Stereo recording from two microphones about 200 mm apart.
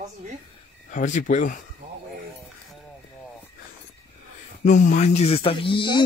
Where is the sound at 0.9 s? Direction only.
40° left (ahead or behind).